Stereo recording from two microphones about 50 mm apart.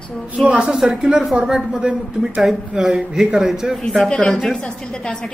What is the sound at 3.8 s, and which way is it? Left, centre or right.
Speech, centre.